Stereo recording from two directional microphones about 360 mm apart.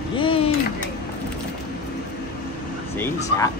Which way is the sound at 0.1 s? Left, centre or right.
Centre.